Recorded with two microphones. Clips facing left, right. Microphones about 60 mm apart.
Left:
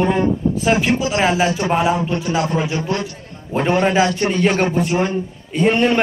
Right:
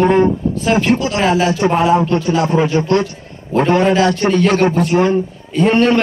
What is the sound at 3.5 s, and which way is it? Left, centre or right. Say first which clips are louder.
A man's voice: right 4 dB; centre.